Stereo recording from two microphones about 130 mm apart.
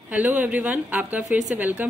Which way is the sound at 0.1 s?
10° right (ahead or behind).